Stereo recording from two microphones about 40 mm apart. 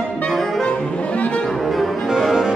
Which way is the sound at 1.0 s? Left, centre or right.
Left.